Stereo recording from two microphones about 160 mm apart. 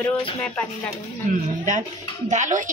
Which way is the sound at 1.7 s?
50° right (ahead or behind).